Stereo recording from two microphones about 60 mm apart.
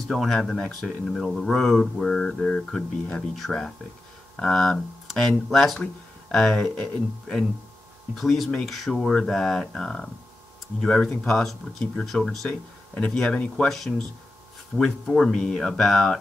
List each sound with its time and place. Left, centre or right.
0.1 s speech: centre
2.0 s speech: centre
3.3 s speech: centre
12.4 s speech: centre
13.7 s speech: centre